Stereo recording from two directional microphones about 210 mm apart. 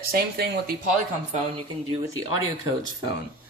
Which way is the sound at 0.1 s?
50° right (ahead or behind).